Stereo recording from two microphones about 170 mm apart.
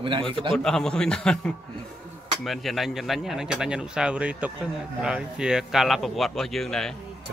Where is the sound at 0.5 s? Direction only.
5° left (ahead or behind).